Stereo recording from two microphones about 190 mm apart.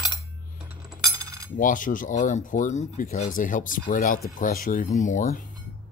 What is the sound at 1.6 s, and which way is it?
Speech, 45° left (ahead or behind).